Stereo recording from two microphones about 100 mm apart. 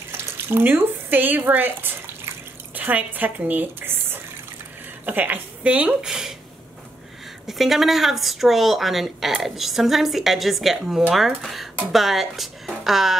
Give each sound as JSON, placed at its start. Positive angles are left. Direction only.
{"t": 0.2, "sound": "a woman's voice", "side_deg": -20}
{"t": 7.4, "sound": "a woman's voice", "side_deg": 0}